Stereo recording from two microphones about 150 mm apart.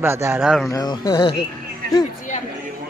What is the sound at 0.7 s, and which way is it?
Speech, 25° left (ahead or behind).